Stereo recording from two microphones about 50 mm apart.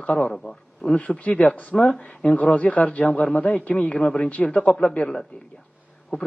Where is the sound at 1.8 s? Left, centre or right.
Centre.